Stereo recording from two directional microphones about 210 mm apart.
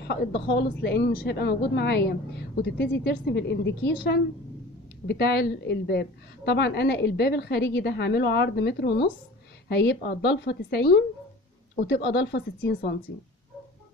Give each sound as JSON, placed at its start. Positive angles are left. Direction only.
{"t": 0.0, "sound": "a woman's voice", "side_deg": 55}